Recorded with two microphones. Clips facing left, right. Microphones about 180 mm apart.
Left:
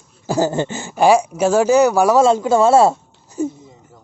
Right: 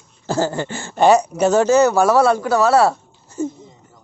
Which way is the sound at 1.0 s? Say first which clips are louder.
Even; 10° left (ahead or behind).